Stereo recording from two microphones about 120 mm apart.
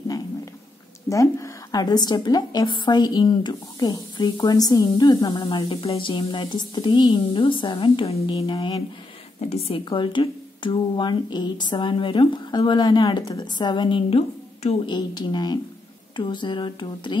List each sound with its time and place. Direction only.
1.0 s a woman's voice: 25° left (ahead or behind); by 8.8 s 45° left (ahead or behind)
9.5 s a woman's voice: 55° left (ahead or behind)
9.8 s a woman's voice: 40° left (ahead or behind)
14.1 s a woman's voice: 60° left (ahead or behind)
14.9 s a woman's voice: 35° left (ahead or behind)